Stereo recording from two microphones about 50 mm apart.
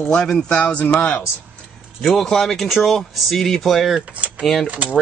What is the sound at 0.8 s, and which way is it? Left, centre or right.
Speech, left.